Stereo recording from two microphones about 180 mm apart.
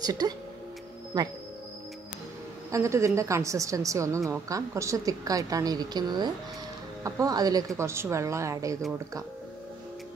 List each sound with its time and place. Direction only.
0.0 s a woman's voice: 20° right (ahead or behind)
2.7 s a woman's voice: 15° right (ahead or behind)